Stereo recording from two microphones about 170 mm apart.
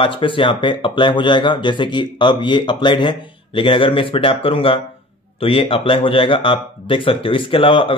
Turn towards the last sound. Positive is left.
turn(degrees=30)  # may be behind; listen again after turning